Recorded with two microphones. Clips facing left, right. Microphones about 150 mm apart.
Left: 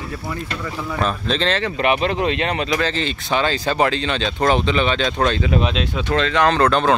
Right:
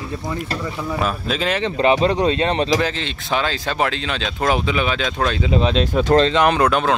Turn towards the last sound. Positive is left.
turn(degrees=-10)  # may be behind; listen again after turning